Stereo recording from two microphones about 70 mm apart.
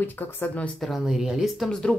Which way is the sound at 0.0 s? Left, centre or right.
Left.